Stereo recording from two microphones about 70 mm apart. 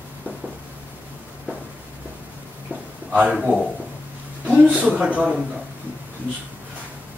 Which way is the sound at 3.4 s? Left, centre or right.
Centre.